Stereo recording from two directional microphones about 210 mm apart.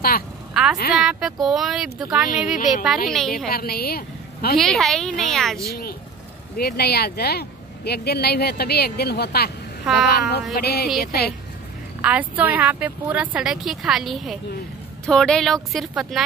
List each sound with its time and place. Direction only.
0.6 s a sound: centre (ahead or behind)
0.9 s speech: centre (ahead or behind)
3.4 s a woman's voice: 45° left (ahead or behind)
4.6 s speech: centre (ahead or behind)
6.5 s speech: 50° left (ahead or behind)
12.0 s speech: 5° right (ahead or behind)